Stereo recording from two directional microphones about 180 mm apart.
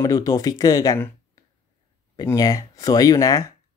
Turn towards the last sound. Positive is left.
turn(degrees=20)  # may be behind; listen again after turning